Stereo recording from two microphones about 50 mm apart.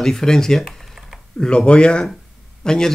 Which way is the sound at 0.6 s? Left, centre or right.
Centre.